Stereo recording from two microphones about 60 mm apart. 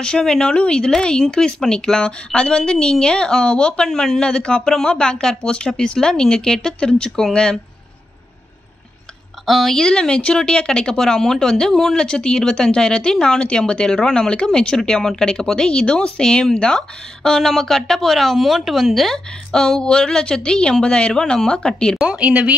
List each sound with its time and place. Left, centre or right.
0.0 s speech: centre
7.1 s speech: centre
9.5 s speech: centre
22.0 s speech: centre